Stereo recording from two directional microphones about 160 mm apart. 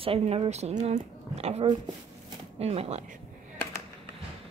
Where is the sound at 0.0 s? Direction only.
35° right (ahead or behind).